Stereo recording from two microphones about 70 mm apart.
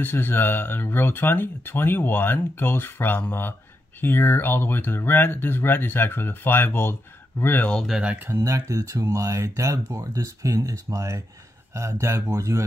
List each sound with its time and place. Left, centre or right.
0.0 s speech: left
8.3 s speech: right